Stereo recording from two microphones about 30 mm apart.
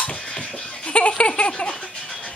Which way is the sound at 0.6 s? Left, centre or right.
Left.